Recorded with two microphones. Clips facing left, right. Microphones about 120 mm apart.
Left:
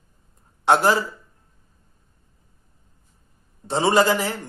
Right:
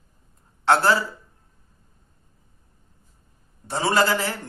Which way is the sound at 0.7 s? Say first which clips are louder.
Left 1 dB; 15° left (ahead or behind).